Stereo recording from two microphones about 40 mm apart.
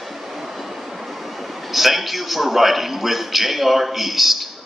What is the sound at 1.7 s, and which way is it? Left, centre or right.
A man's voice, centre.